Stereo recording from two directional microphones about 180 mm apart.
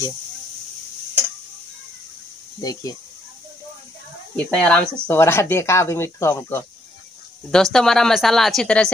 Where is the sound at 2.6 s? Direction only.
20° left (ahead or behind).